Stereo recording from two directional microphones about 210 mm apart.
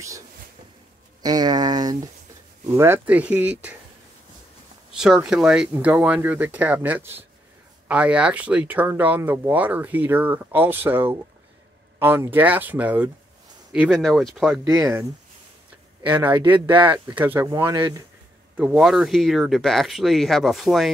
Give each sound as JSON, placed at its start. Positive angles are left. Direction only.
{"t": 1.2, "sound": "speech", "side_deg": -20}
{"t": 4.9, "sound": "speech", "side_deg": 0}
{"t": 14.6, "sound": "speech", "side_deg": -15}
{"t": 16.1, "sound": "speech", "side_deg": -10}
{"t": 18.6, "sound": "speech", "side_deg": -5}